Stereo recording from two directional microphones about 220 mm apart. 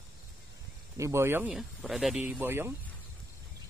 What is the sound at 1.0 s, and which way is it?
Speech, 10° right (ahead or behind).